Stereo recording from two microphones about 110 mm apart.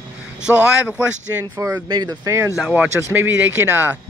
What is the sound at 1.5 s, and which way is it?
Speech, 30° right (ahead or behind).